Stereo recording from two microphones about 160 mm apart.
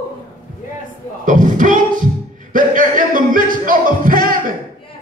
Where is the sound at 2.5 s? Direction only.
55° right (ahead or behind).